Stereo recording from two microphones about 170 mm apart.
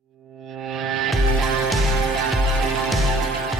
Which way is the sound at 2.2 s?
Centre (ahead or behind).